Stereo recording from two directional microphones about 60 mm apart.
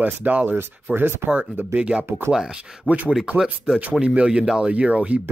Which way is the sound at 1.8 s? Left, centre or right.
Centre.